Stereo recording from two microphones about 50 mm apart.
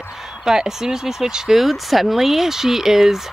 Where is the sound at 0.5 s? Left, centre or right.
Centre.